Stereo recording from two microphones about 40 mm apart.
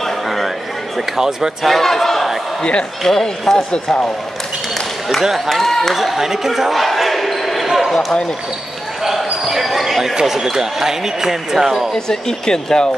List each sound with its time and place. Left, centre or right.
0.0 s a sound: centre
0.9 s speech: centre
1.6 s speech: centre
3.7 s speech: left
5.5 s speech: centre
5.9 s speech: centre
9.0 s basketball bounce: centre
10.1 s speech: centre
11.9 s speech: centre